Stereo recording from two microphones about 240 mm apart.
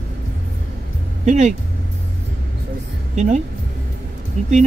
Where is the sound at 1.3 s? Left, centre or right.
Right.